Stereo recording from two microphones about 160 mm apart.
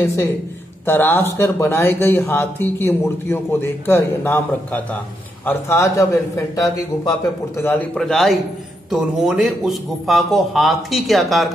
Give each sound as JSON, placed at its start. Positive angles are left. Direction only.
{"t": 0.0, "sound": "speech", "side_deg": 15}
{"t": 7.9, "sound": "a man's voice", "side_deg": 0}